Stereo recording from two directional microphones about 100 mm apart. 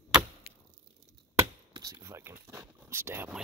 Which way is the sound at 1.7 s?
35° right (ahead or behind).